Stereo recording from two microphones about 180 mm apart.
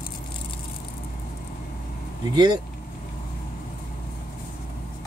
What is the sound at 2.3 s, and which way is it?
Speech, 25° right (ahead or behind).